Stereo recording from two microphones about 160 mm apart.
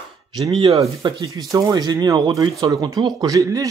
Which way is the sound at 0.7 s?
25° right (ahead or behind).